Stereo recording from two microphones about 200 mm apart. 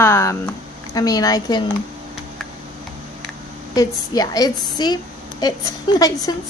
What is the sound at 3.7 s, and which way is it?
A woman's voice, 20° left (ahead or behind).